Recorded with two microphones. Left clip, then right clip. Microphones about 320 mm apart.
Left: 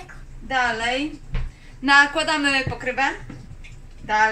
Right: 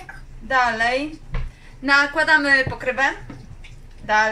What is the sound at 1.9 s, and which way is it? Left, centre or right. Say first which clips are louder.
Speech: even; centre.